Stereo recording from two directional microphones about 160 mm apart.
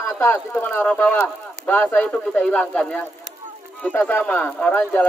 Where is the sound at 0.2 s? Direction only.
15° left (ahead or behind).